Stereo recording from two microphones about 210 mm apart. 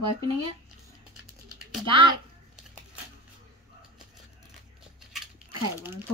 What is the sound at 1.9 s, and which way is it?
Speech, 25° right (ahead or behind).